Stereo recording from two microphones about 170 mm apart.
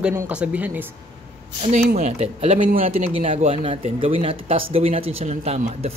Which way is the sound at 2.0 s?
40° right (ahead or behind).